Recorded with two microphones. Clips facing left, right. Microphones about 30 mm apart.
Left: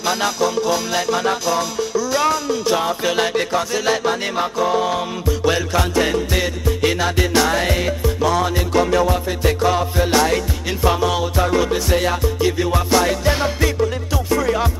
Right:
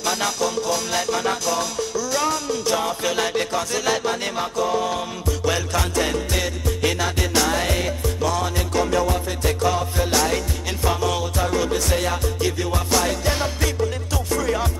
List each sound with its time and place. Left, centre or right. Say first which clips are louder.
0.0 s music: left 4 dB; centre